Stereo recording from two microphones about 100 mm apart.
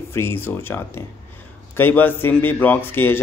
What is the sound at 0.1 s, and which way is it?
Speech, 25° left (ahead or behind).